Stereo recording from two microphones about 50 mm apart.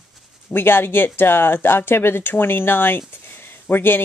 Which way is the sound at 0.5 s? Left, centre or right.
Left.